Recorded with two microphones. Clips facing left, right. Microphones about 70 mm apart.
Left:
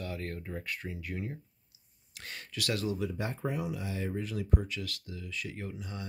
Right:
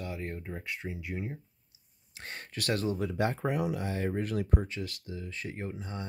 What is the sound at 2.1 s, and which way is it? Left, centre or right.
Speech, right.